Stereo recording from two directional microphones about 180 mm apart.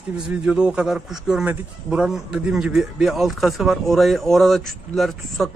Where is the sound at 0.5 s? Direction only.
5° right (ahead or behind).